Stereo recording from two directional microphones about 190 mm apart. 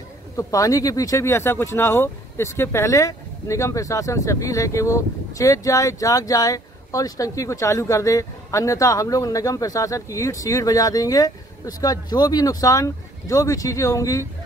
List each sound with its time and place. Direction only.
0.4 s speech: 20° left (ahead or behind)